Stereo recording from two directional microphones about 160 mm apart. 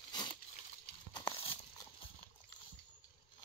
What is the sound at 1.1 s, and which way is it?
Horse, 30° left (ahead or behind).